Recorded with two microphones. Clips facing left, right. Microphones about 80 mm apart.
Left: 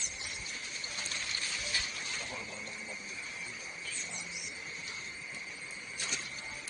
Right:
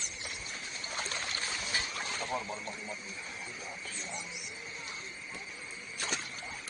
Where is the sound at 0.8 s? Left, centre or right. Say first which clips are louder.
Right 5 dB; right.